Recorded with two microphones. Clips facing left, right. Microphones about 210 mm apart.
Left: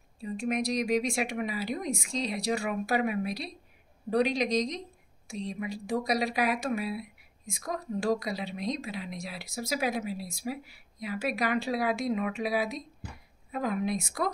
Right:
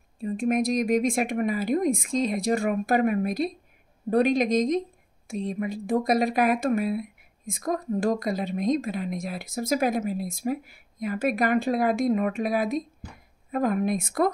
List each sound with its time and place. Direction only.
0.2 s speech: 50° right (ahead or behind)